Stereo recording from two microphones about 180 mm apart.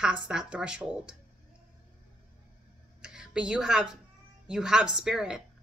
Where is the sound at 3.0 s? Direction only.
5° right (ahead or behind).